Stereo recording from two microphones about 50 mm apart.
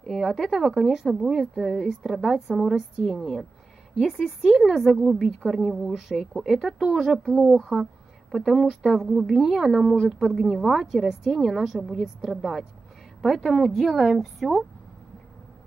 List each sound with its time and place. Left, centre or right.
0.1 s a woman's voice: centre
6.1 s a woman's voice: centre